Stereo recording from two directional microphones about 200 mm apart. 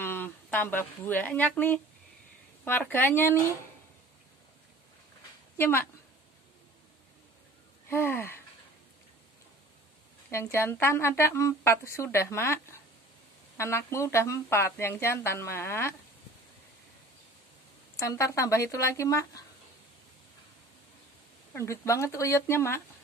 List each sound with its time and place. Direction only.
0.0 s speech: 10° left (ahead or behind)
5.6 s speech: 10° left (ahead or behind)
7.9 s speech: 10° left (ahead or behind)
10.3 s speech: 15° left (ahead or behind)
13.6 s speech: 15° left (ahead or behind)
17.9 s speech: 15° left (ahead or behind)
21.5 s speech: 15° left (ahead or behind)